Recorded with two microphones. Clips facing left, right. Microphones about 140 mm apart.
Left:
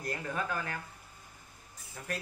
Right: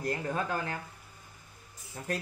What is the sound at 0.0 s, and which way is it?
Speech, 25° right (ahead or behind).